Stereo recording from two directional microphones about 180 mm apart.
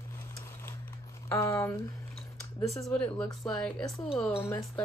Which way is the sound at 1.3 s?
15° left (ahead or behind).